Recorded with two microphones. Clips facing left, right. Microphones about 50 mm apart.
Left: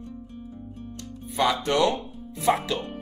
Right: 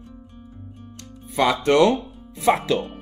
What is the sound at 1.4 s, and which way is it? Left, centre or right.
Speech, right.